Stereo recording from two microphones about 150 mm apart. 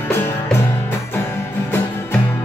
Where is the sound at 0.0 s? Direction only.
15° left (ahead or behind).